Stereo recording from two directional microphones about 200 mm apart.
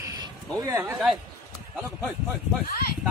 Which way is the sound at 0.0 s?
15° right (ahead or behind).